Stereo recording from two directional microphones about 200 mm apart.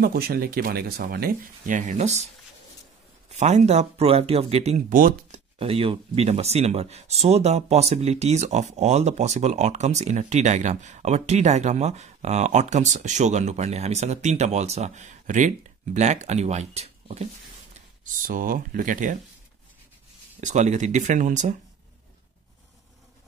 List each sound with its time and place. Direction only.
0.0 s speech: 50° right (ahead or behind); by 2.2 s 35° right (ahead or behind)
3.3 s speech: 35° right (ahead or behind)
5.6 s speech: 30° right (ahead or behind)
18.0 s speech: 45° right (ahead or behind)
20.3 s speech: 35° right (ahead or behind)